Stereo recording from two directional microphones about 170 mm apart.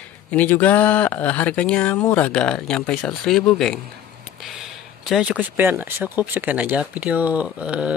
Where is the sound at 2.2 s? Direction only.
5° left (ahead or behind).